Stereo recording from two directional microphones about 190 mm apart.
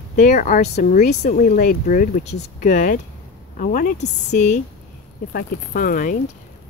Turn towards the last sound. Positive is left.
turn(degrees=45)  # may be behind; listen again after turning